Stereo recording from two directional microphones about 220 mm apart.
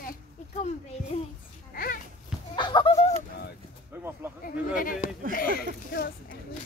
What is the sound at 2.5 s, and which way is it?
Speech, 20° left (ahead or behind).